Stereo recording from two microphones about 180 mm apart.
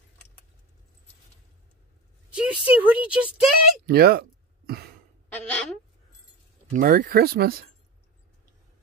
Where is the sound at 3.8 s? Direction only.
60° right (ahead or behind).